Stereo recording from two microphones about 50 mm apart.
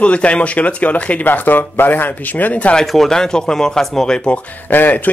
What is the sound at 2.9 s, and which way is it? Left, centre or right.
Speech, centre.